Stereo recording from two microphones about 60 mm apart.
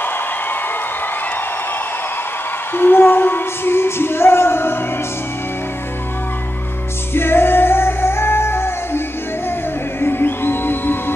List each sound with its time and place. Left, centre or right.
2.7 s music: left
7.2 s music: left